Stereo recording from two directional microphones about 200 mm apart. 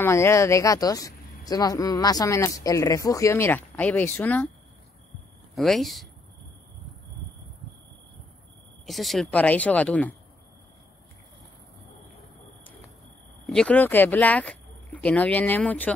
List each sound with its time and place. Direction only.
0.0 s speech: 15° left (ahead or behind)
5.6 s speech: centre (ahead or behind)
8.8 s speech: centre (ahead or behind)
13.5 s speech: 5° left (ahead or behind)